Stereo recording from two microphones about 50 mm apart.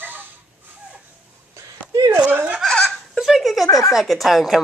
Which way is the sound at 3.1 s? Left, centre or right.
Centre.